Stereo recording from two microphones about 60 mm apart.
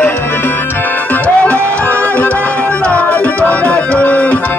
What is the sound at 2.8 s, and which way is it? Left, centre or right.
Music, left.